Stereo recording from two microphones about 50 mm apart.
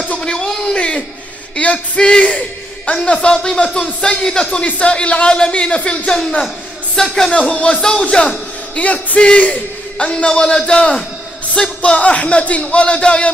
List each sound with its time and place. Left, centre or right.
0.1 s a sound: centre
1.6 s speech: centre
7.0 s speech: centre